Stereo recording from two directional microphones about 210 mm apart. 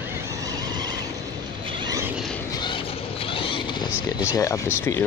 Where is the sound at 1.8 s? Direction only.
15° right (ahead or behind).